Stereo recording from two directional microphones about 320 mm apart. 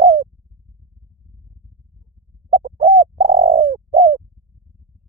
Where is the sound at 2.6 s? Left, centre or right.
Right.